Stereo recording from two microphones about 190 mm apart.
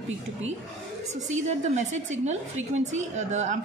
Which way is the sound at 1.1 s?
35° right (ahead or behind).